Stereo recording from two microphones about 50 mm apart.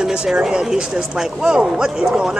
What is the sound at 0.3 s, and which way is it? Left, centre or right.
Speech, centre.